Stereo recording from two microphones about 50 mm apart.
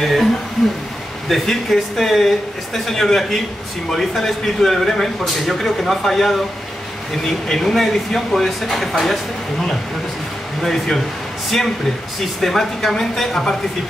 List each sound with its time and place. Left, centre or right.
0.0 s speech: centre
1.3 s speech: centre
7.4 s speech: centre
12.4 s a woman's voice: centre